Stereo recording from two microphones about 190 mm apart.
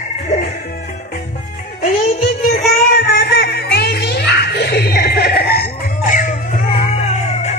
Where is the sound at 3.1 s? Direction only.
60° left (ahead or behind); by 7.5 s 35° left (ahead or behind).